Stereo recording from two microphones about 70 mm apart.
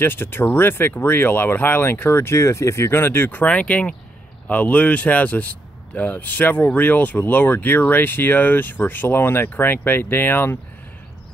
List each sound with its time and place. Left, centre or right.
0.0 s speech: left